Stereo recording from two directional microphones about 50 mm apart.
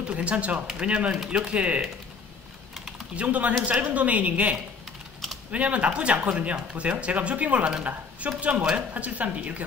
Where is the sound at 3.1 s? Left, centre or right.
Right.